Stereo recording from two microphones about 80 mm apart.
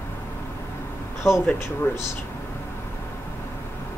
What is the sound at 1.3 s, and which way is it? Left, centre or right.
Speech, left.